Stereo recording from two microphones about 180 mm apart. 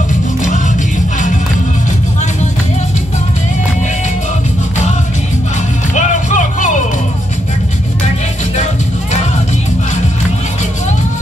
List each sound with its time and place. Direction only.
5.9 s music: 45° left (ahead or behind)